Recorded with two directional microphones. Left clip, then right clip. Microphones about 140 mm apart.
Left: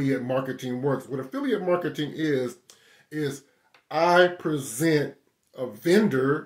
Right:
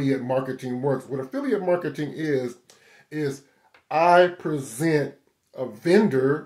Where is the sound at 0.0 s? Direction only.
25° left (ahead or behind).